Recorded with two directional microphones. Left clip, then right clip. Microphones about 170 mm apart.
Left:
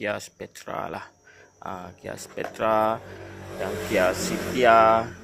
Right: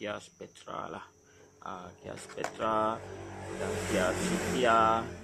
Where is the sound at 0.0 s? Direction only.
15° left (ahead or behind).